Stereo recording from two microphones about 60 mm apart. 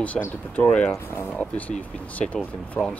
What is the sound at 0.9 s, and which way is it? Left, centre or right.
Speech, left.